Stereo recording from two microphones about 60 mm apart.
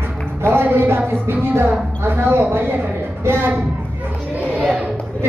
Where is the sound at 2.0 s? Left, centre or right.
Right.